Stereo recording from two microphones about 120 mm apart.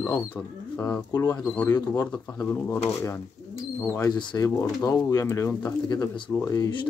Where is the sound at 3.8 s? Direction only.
20° left (ahead or behind).